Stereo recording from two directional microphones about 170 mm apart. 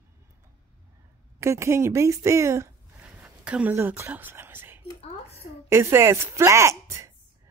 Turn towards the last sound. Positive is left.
turn(degrees=-15)  # may be behind; listen again after turning